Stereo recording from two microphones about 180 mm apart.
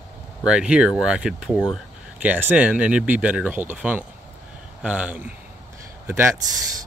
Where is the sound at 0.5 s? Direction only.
5° right (ahead or behind).